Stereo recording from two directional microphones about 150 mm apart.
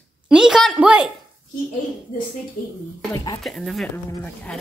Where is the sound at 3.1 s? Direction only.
25° left (ahead or behind).